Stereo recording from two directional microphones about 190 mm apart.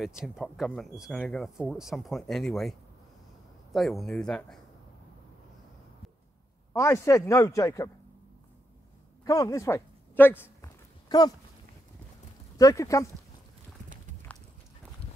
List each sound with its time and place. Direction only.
0.2 s speech: centre (ahead or behind)
3.7 s speech: centre (ahead or behind)
6.7 s speech: 15° left (ahead or behind)
9.2 s a sound: 15° left (ahead or behind)
12.5 s speech: 15° left (ahead or behind)